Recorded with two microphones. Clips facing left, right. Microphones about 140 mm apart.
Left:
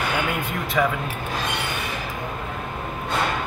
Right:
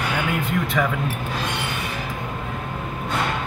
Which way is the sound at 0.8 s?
10° left (ahead or behind).